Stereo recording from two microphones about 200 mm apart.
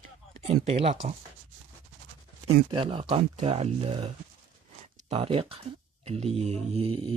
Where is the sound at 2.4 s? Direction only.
25° right (ahead or behind).